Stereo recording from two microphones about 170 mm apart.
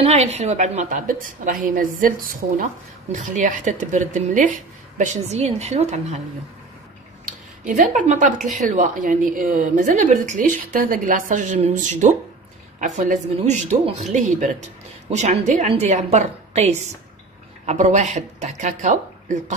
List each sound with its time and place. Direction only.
0.0 s a woman's voice: 40° right (ahead or behind)
7.6 s a woman's voice: 50° right (ahead or behind)